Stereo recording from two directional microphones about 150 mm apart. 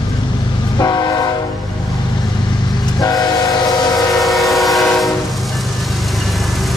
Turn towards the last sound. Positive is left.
turn(degrees=0)  # may be behind; listen again after turning